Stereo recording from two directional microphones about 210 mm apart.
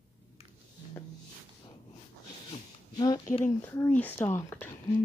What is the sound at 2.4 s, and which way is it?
Speech, 20° left (ahead or behind).